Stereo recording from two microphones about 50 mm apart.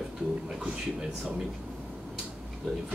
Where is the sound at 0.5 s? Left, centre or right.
Centre.